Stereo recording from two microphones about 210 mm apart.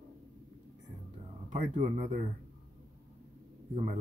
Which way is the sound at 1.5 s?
35° right (ahead or behind).